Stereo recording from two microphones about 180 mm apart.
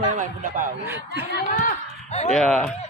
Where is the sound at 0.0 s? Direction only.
45° right (ahead or behind).